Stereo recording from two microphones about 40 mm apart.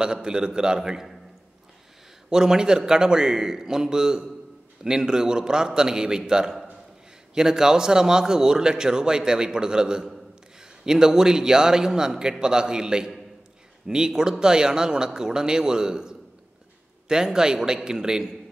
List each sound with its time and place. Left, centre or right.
0.0 s a man's voice: right
2.2 s a man's voice: centre